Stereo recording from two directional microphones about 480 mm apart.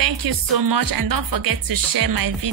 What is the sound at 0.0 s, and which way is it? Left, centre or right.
Speech, right.